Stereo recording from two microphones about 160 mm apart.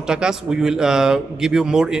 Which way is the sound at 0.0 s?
5° right (ahead or behind).